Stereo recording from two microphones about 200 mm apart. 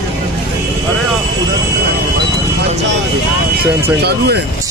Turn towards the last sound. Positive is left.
turn(degrees=-55)  # may be behind; listen again after turning